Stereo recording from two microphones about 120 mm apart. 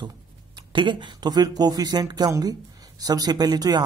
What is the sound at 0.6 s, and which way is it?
Speech, 40° right (ahead or behind).